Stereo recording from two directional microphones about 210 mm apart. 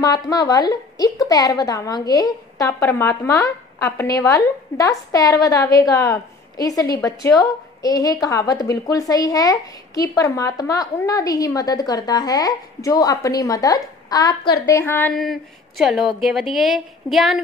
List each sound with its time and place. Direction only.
0.0 s a woman's voice: 15° left (ahead or behind); by 17.4 s centre (ahead or behind)